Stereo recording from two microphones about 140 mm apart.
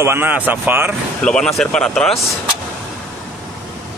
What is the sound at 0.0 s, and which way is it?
Speech, 15° right (ahead or behind).